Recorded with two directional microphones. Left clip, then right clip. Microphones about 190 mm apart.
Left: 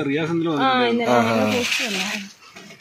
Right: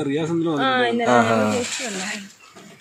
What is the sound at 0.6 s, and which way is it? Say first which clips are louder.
Speech: left 2 dB; 50° left (ahead or behind).